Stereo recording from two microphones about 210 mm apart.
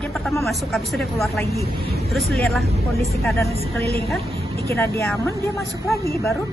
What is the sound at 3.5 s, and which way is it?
Speech, 30° right (ahead or behind).